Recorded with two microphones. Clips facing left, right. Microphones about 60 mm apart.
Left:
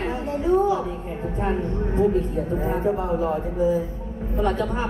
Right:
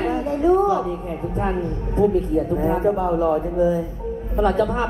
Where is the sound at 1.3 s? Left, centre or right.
Right.